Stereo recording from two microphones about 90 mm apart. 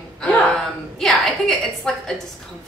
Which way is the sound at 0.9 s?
5° left (ahead or behind).